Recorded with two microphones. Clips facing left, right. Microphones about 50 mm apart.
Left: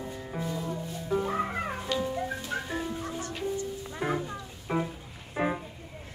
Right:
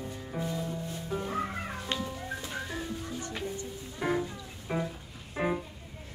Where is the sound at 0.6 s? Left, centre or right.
Left.